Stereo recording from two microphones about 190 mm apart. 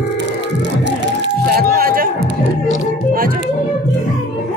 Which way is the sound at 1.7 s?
50° right (ahead or behind).